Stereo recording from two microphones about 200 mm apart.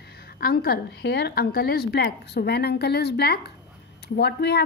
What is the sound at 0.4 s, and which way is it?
Speech, 50° left (ahead or behind).